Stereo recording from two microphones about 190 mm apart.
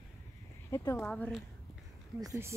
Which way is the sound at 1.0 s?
5° left (ahead or behind).